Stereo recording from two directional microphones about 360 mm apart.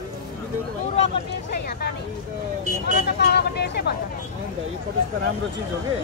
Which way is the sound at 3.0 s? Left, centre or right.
Left.